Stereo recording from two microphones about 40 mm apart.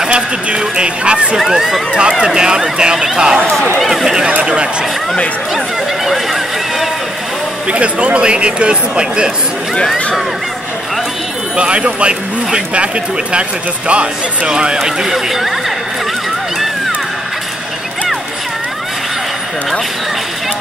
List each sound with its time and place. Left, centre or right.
0.0 s speech: right
1.3 s speech: centre
2.0 s speech: centre
3.8 s speech: centre
4.3 s speech: right
6.0 s a sound: centre
7.6 s speech: right
11.5 s speech: right
14.8 s speech: centre